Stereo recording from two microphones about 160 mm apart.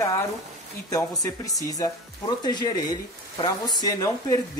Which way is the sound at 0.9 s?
20° left (ahead or behind).